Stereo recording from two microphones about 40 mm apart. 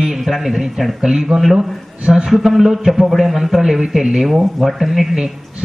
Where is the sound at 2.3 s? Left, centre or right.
Centre.